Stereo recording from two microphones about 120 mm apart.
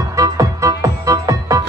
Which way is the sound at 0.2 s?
25° right (ahead or behind).